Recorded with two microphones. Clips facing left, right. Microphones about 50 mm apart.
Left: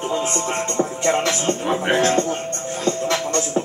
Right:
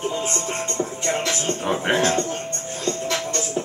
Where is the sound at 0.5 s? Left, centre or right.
Left.